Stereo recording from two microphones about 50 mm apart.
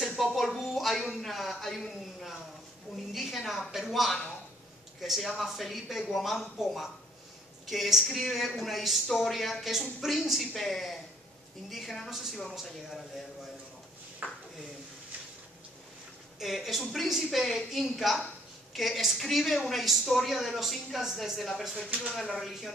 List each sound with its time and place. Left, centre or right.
0.2 s a sound: centre
3.1 s speech: centre
14.2 s speech: right
16.3 s speech: centre